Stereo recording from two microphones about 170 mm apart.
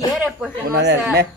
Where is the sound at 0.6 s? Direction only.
75° right (ahead or behind).